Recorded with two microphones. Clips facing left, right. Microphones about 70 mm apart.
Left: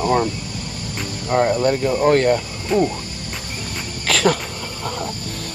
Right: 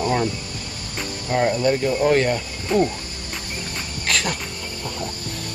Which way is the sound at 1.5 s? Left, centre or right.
Left.